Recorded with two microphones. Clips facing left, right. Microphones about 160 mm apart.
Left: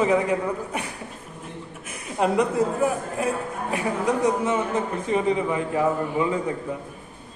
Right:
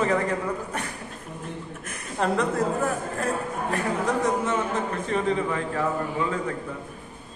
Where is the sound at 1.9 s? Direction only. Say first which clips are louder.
Left 3 dB; 10° left (ahead or behind).